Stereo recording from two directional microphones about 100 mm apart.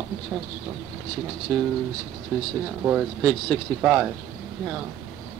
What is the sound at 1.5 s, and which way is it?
Speech, 5° right (ahead or behind).